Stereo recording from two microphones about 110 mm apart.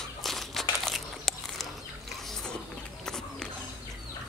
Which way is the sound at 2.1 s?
5° left (ahead or behind).